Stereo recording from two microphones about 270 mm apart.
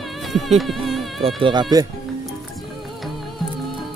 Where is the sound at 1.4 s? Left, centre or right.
Centre.